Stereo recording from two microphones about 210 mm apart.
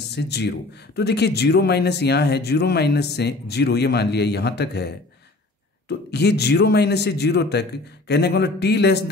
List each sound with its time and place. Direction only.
0.1 s speech: 55° left (ahead or behind)